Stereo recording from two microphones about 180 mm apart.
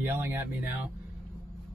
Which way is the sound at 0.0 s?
15° right (ahead or behind).